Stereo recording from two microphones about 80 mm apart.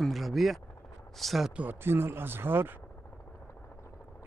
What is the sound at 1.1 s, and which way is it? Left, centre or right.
Speech, centre.